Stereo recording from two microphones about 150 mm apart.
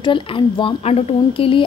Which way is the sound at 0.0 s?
35° left (ahead or behind).